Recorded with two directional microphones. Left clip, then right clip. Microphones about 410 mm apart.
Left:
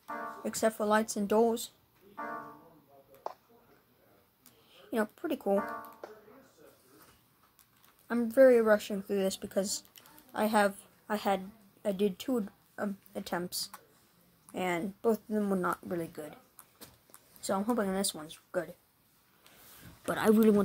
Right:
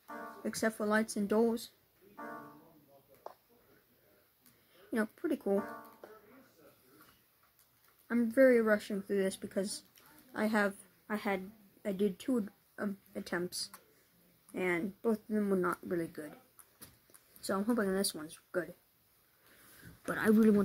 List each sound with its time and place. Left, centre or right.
0.0 s music: centre
0.5 s speech: centre
2.1 s music: centre
4.9 s speech: centre
5.6 s speech: centre
8.1 s a woman's voice: centre
17.4 s speech: centre
20.1 s speech: centre